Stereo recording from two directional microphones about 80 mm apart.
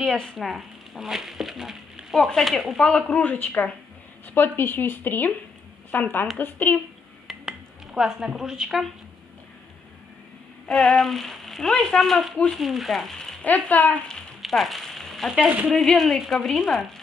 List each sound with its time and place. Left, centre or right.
0.0 s speech: centre
3.1 s speech: left
7.2 s a sound: centre
10.7 s speech: centre
13.4 s speech: centre
14.4 s a sound: centre
15.4 s speech: centre
15.7 s speech: centre